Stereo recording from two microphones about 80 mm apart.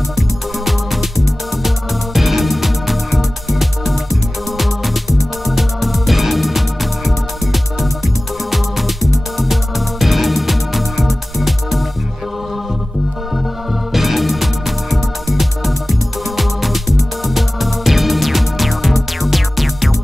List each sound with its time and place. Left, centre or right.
0.7 s music: centre
13.9 s music: centre